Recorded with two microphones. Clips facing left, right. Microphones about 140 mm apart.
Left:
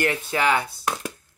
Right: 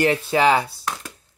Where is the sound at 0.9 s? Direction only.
10° left (ahead or behind).